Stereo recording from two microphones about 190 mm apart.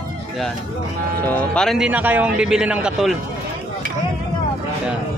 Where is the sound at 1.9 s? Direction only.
10° right (ahead or behind).